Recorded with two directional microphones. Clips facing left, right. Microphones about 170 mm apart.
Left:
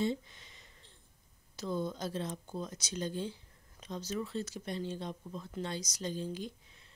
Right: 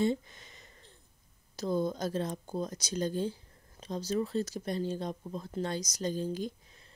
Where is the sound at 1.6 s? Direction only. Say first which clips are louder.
Right 5 dB; 40° right (ahead or behind).